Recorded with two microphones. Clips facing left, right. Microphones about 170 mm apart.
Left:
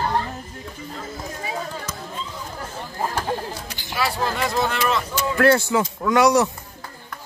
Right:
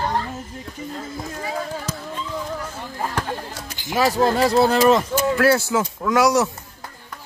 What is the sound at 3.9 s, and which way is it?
Speech, 40° right (ahead or behind).